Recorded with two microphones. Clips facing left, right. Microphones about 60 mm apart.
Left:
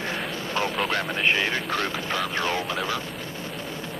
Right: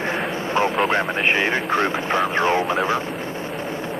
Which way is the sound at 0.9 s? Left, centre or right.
Right.